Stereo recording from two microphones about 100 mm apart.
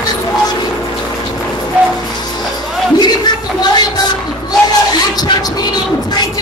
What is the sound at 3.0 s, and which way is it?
Speech, 45° left (ahead or behind).